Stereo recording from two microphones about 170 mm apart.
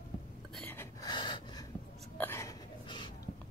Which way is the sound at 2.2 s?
15° left (ahead or behind).